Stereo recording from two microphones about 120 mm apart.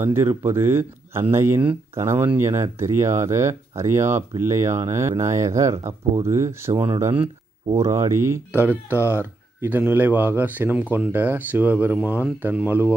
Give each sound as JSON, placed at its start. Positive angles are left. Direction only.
{"t": 0.0, "sound": "speech", "side_deg": -20}